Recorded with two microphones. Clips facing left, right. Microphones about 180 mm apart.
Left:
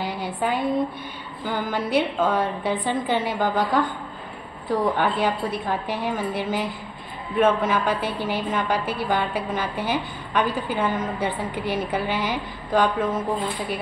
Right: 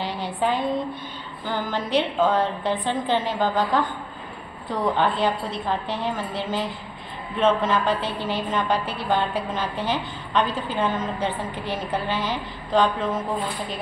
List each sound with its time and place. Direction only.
0.0 s a sound: 5° left (ahead or behind)
1.5 s a woman's voice: 10° left (ahead or behind)
4.9 s a woman's voice: 10° left (ahead or behind)